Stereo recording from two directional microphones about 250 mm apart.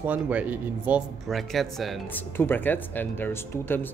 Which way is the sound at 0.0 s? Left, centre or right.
Centre.